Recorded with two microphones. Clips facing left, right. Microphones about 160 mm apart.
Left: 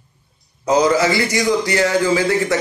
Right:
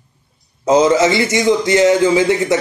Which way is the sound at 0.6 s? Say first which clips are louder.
Right 3 dB; 25° right (ahead or behind).